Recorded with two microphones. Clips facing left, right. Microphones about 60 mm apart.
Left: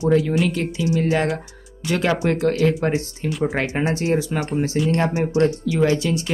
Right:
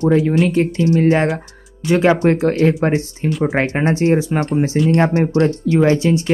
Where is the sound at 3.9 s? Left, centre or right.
Right.